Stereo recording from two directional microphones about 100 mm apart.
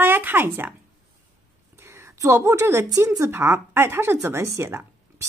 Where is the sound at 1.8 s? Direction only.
25° right (ahead or behind).